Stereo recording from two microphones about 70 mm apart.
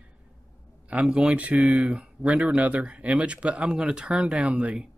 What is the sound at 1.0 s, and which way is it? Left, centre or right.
Speech, centre.